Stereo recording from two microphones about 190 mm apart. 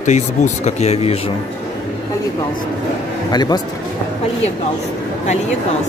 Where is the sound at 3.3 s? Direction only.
20° left (ahead or behind).